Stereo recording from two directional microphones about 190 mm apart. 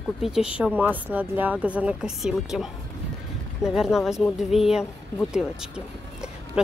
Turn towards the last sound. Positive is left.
turn(degrees=-5)  # may be behind; listen again after turning